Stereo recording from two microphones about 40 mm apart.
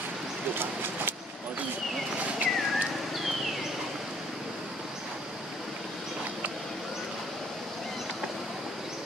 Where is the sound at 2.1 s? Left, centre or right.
Right.